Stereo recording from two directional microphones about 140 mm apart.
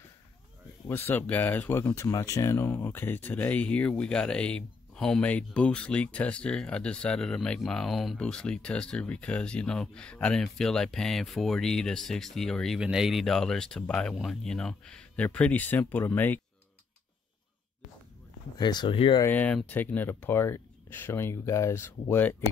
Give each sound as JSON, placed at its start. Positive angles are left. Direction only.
{"t": 0.8, "sound": "speech", "side_deg": 15}
{"t": 18.6, "sound": "speech", "side_deg": 30}
{"t": 19.2, "sound": "speech", "side_deg": 10}